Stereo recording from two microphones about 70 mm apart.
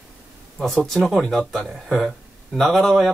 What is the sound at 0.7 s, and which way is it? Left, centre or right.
Speech, centre.